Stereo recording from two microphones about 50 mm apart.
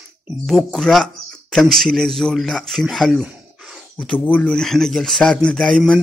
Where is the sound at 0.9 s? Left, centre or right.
Centre.